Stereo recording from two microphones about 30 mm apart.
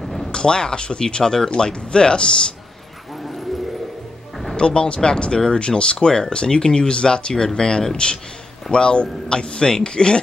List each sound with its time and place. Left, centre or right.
0.0 s a sound: centre
0.3 s speech: left
4.6 s speech: left